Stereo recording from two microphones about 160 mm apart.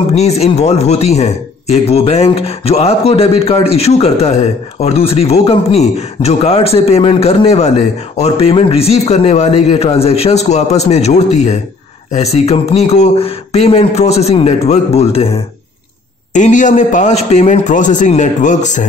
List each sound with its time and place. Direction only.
0.1 s speech: 40° left (ahead or behind)
16.3 s a man's voice: 50° left (ahead or behind)